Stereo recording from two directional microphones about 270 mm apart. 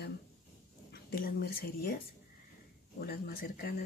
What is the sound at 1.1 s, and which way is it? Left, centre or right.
Speech, left.